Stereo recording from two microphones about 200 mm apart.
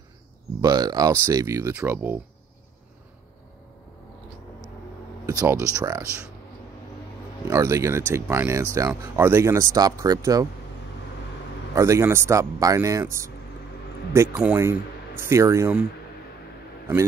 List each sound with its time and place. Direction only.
0.6 s speech: 20° right (ahead or behind)
5.2 s speech: 15° right (ahead or behind)
7.4 s speech: 15° right (ahead or behind)
11.7 s speech: 15° right (ahead or behind)